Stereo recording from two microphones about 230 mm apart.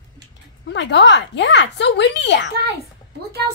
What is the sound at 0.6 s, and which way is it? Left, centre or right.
Speech, left.